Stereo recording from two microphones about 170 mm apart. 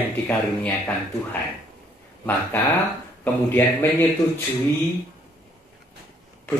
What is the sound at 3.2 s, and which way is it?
Speech, 10° left (ahead or behind).